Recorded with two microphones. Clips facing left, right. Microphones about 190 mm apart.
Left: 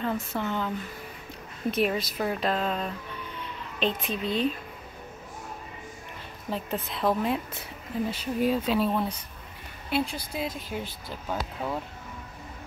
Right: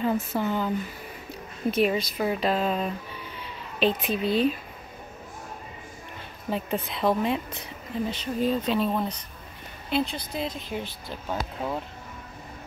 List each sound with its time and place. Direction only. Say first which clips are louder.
0.0 s speech: right 4 dB; 5° right (ahead or behind)
6.5 s speech: right 3 dB; centre (ahead or behind)